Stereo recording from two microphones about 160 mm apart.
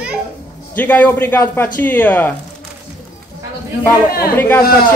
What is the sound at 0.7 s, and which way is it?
Speech, 10° left (ahead or behind).